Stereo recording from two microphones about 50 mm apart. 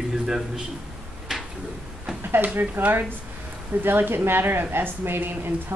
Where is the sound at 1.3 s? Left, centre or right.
Centre.